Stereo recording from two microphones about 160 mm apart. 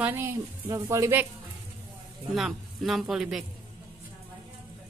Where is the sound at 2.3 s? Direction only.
Centre (ahead or behind).